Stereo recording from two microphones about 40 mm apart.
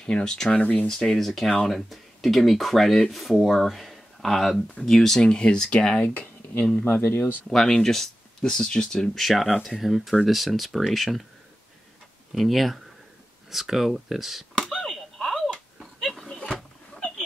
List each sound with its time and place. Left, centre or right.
0.0 s speech: centre
6.0 s speech: left
7.4 s speech: centre
9.2 s speech: centre
12.4 s speech: centre
14.7 s a sound: centre
16.5 s a sound: centre